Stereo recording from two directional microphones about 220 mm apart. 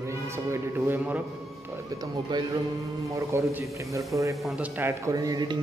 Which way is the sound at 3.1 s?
10° right (ahead or behind).